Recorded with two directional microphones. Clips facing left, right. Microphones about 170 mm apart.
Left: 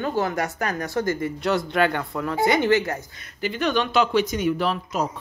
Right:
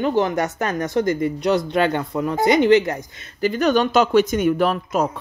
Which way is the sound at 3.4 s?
40° right (ahead or behind).